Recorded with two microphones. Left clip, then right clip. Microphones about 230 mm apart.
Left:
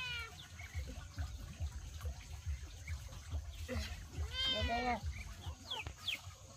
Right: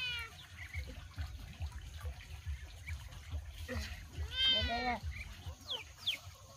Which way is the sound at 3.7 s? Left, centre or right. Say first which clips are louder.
Right 1 dB; centre.